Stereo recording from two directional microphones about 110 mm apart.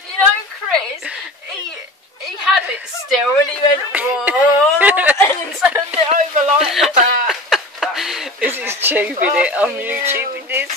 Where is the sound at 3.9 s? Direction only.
15° right (ahead or behind).